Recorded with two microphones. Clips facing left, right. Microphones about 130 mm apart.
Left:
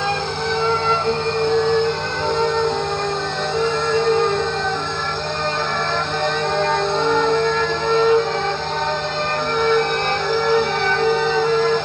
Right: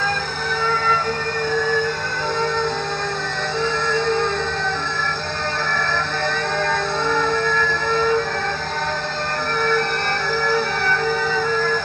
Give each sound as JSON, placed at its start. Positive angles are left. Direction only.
{"t": 0.7, "sound": "music", "side_deg": 25}
{"t": 6.6, "sound": "music", "side_deg": 20}
{"t": 9.6, "sound": "music", "side_deg": 20}